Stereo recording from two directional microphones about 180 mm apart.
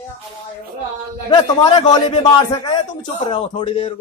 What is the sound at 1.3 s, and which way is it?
A man's voice, 25° left (ahead or behind).